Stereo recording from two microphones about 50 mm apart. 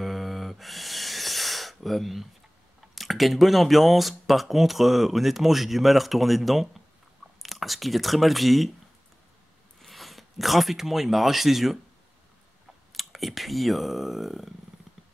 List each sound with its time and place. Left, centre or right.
0.0 s a sound: centre
2.9 s speech: centre
9.8 s speech: centre
12.9 s speech: centre